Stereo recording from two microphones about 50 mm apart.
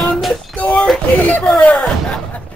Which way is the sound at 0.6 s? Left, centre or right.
Left.